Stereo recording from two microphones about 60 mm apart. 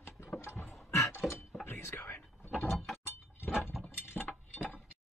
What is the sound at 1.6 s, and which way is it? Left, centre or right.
Whispering, left.